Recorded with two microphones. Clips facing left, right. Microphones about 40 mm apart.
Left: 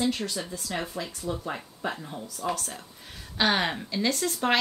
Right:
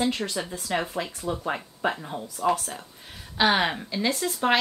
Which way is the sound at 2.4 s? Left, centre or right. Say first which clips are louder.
Right 7 dB; centre.